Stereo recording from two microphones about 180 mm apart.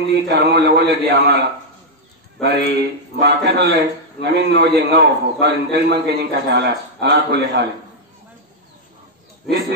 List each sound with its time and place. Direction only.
0.3 s a man's voice: 70° right (ahead or behind)
2.4 s a man's voice: 75° right (ahead or behind)